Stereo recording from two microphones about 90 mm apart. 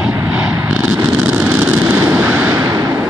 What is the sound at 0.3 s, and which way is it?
Vehicle, 15° right (ahead or behind).